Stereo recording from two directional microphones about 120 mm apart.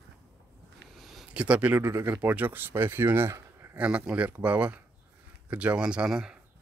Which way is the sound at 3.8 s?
10° right (ahead or behind).